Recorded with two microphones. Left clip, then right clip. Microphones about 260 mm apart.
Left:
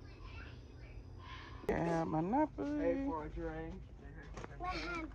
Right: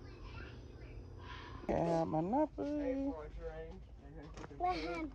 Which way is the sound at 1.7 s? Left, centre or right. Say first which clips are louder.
Right 1 dB; centre.